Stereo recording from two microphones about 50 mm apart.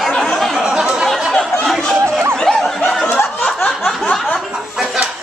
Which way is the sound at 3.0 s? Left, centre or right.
Left.